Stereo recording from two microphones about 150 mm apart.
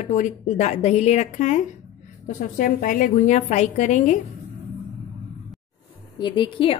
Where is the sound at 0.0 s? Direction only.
55° left (ahead or behind).